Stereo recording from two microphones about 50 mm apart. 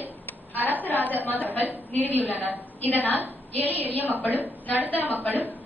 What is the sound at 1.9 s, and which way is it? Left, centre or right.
Speech, left.